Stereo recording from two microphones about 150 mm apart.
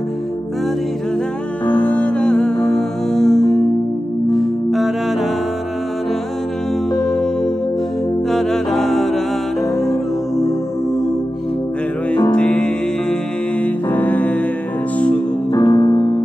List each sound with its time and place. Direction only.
1.7 s music: 10° left (ahead or behind)
7.0 s music: 5° left (ahead or behind)
8.3 s music: centre (ahead or behind)
12.4 s music: 5° left (ahead or behind)
15.5 s music: 25° left (ahead or behind)